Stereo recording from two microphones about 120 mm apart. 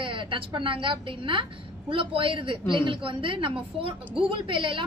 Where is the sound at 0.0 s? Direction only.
45° right (ahead or behind).